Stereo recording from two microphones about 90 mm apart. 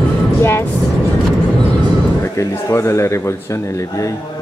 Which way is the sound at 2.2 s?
30° left (ahead or behind).